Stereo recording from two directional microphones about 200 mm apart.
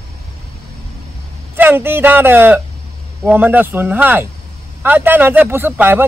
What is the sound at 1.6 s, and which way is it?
A man's voice, 10° right (ahead or behind).